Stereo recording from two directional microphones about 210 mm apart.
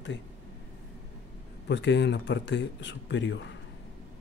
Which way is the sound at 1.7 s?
55° left (ahead or behind).